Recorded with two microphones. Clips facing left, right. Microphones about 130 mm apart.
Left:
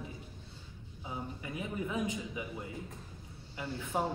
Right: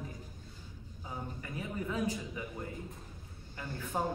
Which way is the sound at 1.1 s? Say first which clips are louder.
Left 2 dB; 15° left (ahead or behind).